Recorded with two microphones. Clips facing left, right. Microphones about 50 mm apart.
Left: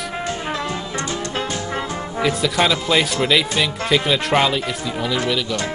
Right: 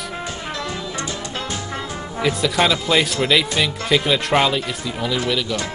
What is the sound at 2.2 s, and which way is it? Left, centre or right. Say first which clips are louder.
Speech: even; centre.